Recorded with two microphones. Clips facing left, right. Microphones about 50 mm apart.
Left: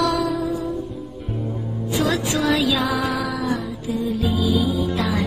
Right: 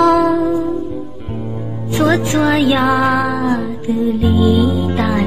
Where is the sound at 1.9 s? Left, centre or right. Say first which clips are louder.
Right 8 dB; right.